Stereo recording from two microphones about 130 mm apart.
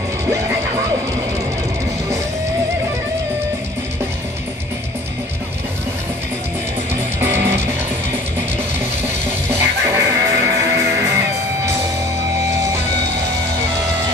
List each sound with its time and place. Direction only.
7.2 s music: 20° right (ahead or behind)
9.5 s music: 20° right (ahead or behind)